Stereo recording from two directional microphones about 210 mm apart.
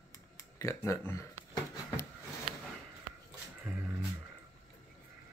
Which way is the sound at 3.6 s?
10° right (ahead or behind).